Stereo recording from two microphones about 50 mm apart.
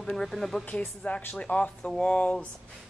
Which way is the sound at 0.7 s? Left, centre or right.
Left.